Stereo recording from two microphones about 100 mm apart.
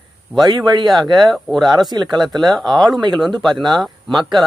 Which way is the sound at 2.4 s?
45° right (ahead or behind).